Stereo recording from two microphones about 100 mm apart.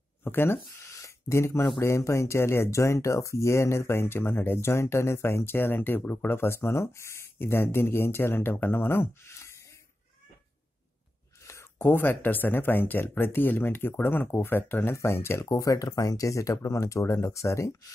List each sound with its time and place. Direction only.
0.2 s speech: 20° left (ahead or behind)
11.4 s speech: 25° left (ahead or behind)
15.5 s speech: 35° left (ahead or behind)